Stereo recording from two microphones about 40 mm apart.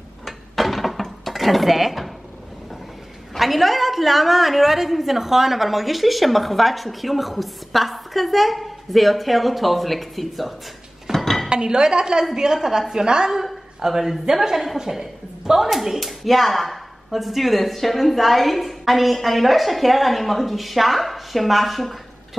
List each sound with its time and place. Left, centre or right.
0.2 s dishes: centre
3.3 s a woman's voice: centre
11.1 s dishes: centre
11.4 s a woman's voice: right
12.5 s a woman's voice: centre
13.3 s a sound: centre
14.2 s a woman's voice: centre